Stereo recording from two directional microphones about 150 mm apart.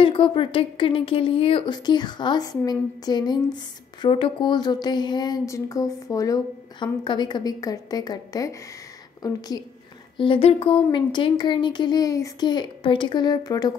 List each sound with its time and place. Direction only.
0.0 s a woman's voice: 35° left (ahead or behind)
10.1 s a woman's voice: 35° left (ahead or behind)